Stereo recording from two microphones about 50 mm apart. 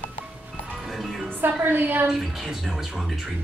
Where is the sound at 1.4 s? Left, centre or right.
Right.